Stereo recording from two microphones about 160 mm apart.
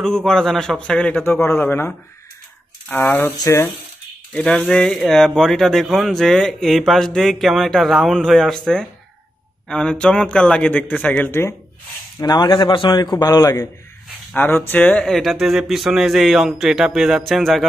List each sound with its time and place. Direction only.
0.0 s a man's voice: 5° left (ahead or behind)
12.2 s a man's voice: 25° left (ahead or behind); by 17.6 s centre (ahead or behind)